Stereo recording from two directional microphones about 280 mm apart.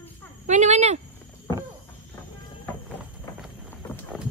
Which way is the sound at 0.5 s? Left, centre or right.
Right.